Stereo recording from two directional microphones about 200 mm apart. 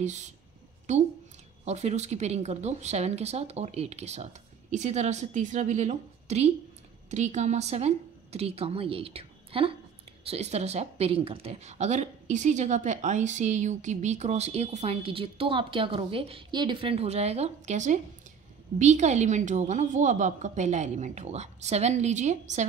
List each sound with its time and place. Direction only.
0.0 s speech: 35° right (ahead or behind)